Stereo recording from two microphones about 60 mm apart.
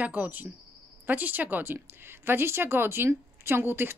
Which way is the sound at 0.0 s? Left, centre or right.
Right.